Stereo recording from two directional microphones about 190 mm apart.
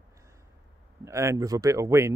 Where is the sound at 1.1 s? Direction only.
15° right (ahead or behind).